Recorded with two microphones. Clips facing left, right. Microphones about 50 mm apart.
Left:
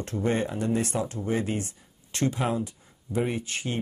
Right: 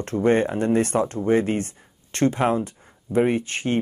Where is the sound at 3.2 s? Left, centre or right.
Right.